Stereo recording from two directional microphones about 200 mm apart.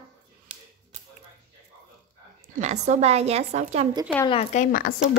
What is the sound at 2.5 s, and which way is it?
Speech, 35° right (ahead or behind).